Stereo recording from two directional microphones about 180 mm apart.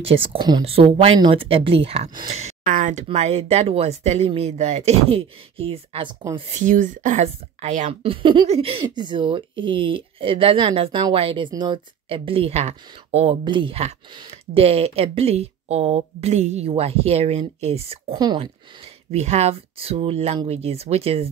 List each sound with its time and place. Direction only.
0.0 s a woman's voice: 30° right (ahead or behind)
6.6 s a woman's voice: 45° right (ahead or behind)
18.1 s speech: 25° right (ahead or behind)
19.1 s a woman's voice: 35° right (ahead or behind)